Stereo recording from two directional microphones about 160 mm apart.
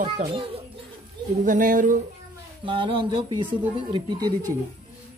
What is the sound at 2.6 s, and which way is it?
Speech, 30° right (ahead or behind).